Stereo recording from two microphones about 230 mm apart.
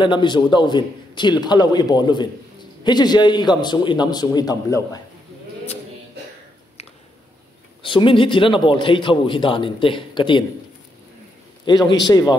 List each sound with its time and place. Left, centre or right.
0.0 s a man's voice: centre
7.8 s a man's voice: left
11.6 s a man's voice: centre